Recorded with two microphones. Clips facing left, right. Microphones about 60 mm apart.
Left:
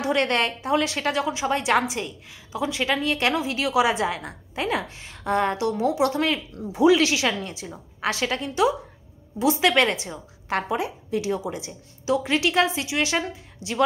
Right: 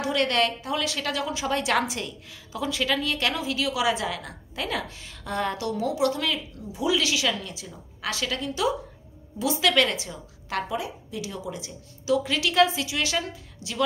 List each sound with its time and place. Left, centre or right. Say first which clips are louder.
0.0 s a woman's voice: left 1 dB; left
6.7 s speech: left 8 dB; left
7.0 s a woman's voice: left 4 dB; left